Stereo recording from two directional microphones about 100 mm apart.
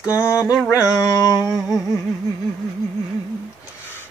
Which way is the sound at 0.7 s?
35° left (ahead or behind).